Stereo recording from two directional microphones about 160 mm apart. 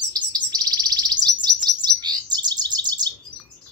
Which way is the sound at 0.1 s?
25° right (ahead or behind).